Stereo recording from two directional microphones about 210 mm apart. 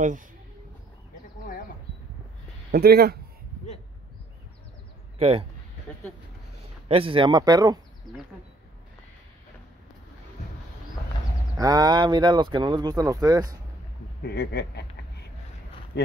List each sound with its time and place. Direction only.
2.7 s speech: 50° right (ahead or behind)
5.2 s speech: 25° right (ahead or behind)
6.9 s speech: 25° right (ahead or behind)
11.5 s speech: 15° right (ahead or behind)
14.2 s a sound: 50° left (ahead or behind)